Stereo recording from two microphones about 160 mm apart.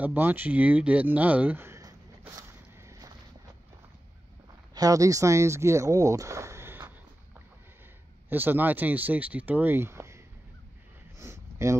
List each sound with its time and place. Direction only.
0.0 s a sound: 10° right (ahead or behind)
4.7 s speech: 20° right (ahead or behind)
8.3 s speech: 10° right (ahead or behind)
11.1 s sniff: 15° right (ahead or behind)